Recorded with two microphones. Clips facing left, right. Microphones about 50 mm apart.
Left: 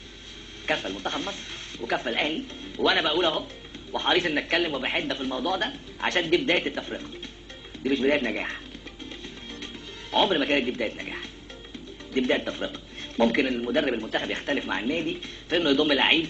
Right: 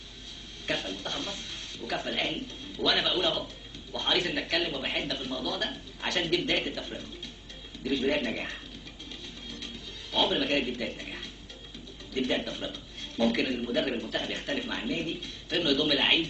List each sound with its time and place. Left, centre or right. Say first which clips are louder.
0.7 s speech: left 5 dB; left
10.1 s speech: left 4 dB; left
12.7 s a sound: left 6 dB; left
13.6 s speech: left 4 dB; left